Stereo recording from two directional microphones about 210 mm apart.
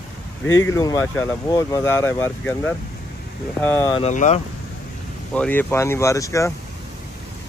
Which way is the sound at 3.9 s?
35° left (ahead or behind).